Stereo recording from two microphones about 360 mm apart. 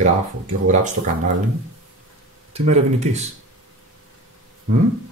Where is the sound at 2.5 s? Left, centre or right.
Centre.